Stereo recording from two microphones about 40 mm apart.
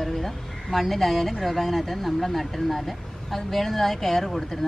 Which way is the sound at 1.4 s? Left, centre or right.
Centre.